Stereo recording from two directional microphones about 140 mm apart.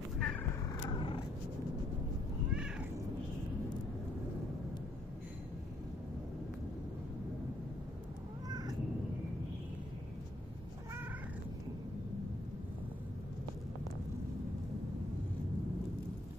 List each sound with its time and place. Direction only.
0.2 s a sound: 5° left (ahead or behind)
0.8 s purr: 35° left (ahead or behind)
2.5 s cat: 5° right (ahead or behind)
8.5 s cat: 30° right (ahead or behind)